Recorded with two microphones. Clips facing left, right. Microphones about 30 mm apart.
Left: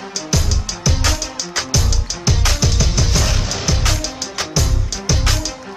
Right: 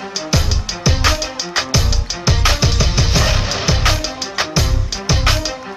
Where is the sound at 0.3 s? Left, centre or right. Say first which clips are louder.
Right 1 dB; right.